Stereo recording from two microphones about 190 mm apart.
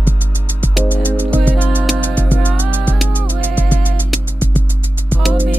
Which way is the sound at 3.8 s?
10° right (ahead or behind).